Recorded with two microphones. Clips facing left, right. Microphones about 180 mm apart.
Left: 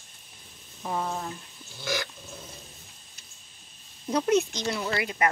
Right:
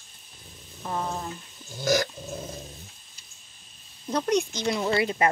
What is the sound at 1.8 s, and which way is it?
Roaring cats, 40° right (ahead or behind).